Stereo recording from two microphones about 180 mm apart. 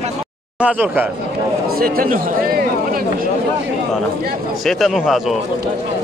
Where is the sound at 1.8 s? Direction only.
55° right (ahead or behind).